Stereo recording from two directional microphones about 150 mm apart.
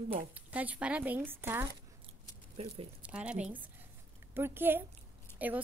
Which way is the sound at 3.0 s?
10° right (ahead or behind).